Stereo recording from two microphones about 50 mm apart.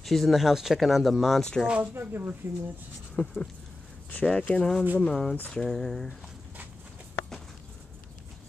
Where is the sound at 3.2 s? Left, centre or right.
Left.